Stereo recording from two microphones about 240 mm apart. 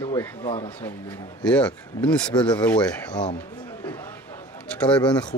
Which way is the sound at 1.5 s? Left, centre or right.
Centre.